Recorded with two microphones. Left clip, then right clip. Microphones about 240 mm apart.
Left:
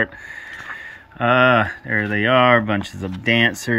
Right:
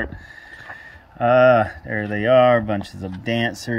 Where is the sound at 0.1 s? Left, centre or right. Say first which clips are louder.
Left 6 dB; left.